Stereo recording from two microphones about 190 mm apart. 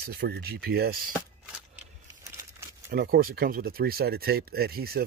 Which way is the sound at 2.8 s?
55° right (ahead or behind).